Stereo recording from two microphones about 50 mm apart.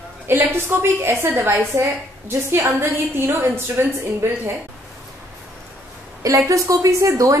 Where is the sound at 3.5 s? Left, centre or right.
Right.